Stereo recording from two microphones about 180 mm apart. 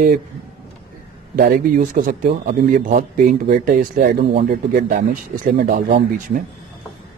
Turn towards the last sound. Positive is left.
turn(degrees=-45)  # may be behind; listen again after turning